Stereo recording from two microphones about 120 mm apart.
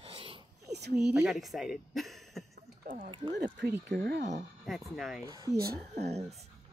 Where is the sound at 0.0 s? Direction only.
50° right (ahead or behind).